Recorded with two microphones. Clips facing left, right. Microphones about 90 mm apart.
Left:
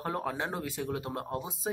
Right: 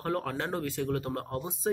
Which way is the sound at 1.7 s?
5° left (ahead or behind).